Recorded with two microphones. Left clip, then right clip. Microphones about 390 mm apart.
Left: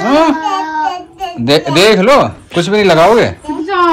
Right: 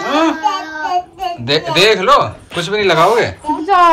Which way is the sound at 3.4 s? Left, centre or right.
Centre.